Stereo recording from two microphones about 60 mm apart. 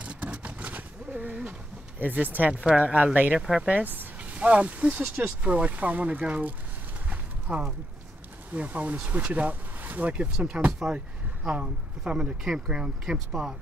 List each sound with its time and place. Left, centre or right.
0.0 s vehicle: right
2.0 s speech: right
3.3 s speech: centre
3.6 s speech: right
7.1 s a sound: right
8.5 s speech: right; by 13.6 s centre